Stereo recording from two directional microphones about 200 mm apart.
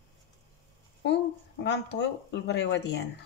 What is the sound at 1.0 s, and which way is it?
Speech, 60° left (ahead or behind).